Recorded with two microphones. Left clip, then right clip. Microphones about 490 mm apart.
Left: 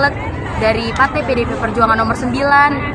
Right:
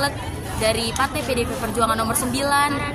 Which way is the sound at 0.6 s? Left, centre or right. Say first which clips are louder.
Left 7 dB; right.